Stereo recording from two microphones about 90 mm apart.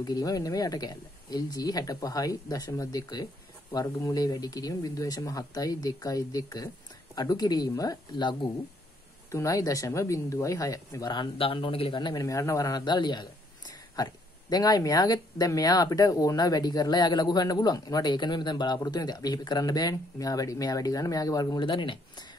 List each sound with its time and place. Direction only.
0.0 s speech: 45° left (ahead or behind)
9.3 s speech: 35° left (ahead or behind)
11.1 s speech: 70° left (ahead or behind)
12.0 s speech: 50° left (ahead or behind)
12.3 s speech: 35° left (ahead or behind)
21.5 s speech: 65° left (ahead or behind)